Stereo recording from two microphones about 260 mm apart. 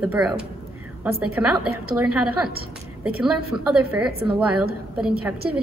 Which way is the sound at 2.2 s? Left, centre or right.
Right.